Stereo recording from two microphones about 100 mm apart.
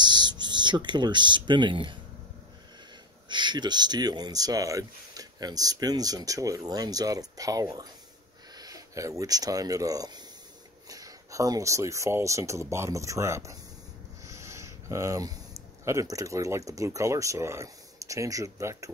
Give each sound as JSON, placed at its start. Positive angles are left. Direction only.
{"t": 0.0, "sound": "speech", "side_deg": -45}
{"t": 3.3, "sound": "speech", "side_deg": -50}